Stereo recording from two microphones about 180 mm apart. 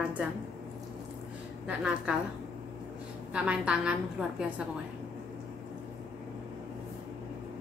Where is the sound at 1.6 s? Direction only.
5° right (ahead or behind).